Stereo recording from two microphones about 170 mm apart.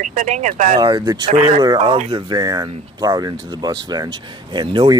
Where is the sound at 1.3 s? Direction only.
40° right (ahead or behind).